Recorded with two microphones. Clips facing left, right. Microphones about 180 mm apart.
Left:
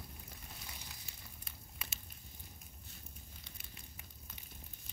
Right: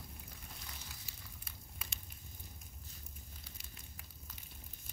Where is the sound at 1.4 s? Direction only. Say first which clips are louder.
Left 1 dB; centre (ahead or behind).